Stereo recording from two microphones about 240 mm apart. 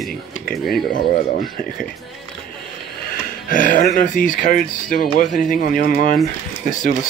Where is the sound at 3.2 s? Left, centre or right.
Left.